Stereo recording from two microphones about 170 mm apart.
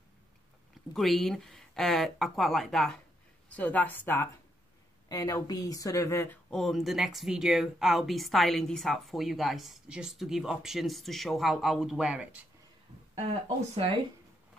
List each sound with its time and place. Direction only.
0.9 s a woman's voice: centre (ahead or behind); by 6.3 s 15° left (ahead or behind)
6.5 s speech: centre (ahead or behind)